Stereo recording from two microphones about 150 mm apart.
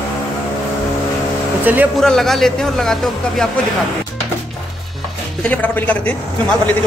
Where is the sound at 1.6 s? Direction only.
10° right (ahead or behind).